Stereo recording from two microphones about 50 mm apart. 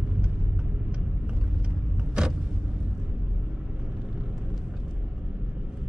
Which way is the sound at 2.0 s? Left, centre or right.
Centre.